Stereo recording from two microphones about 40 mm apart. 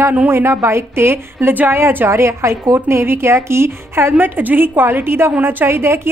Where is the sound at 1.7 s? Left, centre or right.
Right.